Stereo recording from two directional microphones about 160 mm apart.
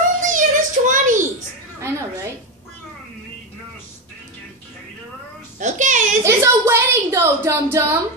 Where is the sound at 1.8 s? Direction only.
15° right (ahead or behind).